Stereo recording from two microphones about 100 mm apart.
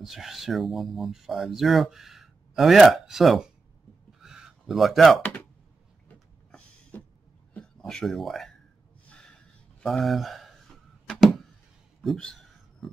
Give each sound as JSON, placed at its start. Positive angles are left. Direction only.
{"t": 0.0, "sound": "speech", "side_deg": -5}
{"t": 4.2, "sound": "a sound", "side_deg": -5}
{"t": 5.2, "sound": "speech", "side_deg": 15}
{"t": 6.9, "sound": "cough", "side_deg": 20}
{"t": 7.5, "sound": "speech", "side_deg": 10}
{"t": 9.1, "sound": "a sound", "side_deg": 10}
{"t": 9.8, "sound": "speech", "side_deg": 0}
{"t": 11.1, "sound": "a sound", "side_deg": 0}
{"t": 12.0, "sound": "speech", "side_deg": 5}
{"t": 12.8, "sound": "music", "side_deg": 0}